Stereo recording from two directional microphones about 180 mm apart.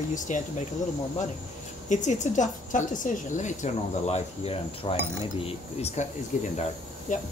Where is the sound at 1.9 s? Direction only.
40° left (ahead or behind).